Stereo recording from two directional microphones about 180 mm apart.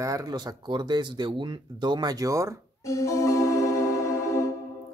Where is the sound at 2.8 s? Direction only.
15° left (ahead or behind).